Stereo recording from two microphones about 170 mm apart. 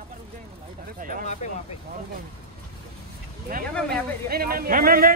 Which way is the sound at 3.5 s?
55° right (ahead or behind).